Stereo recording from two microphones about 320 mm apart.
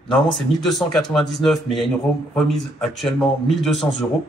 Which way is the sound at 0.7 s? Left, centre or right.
Centre.